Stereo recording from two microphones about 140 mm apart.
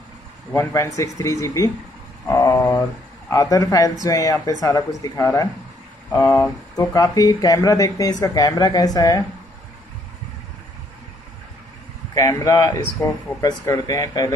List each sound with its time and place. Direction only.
0.5 s speech: 20° left (ahead or behind)
2.2 s a sound: 20° left (ahead or behind)
3.3 s speech: 25° left (ahead or behind)
12.1 s speech: 25° left (ahead or behind)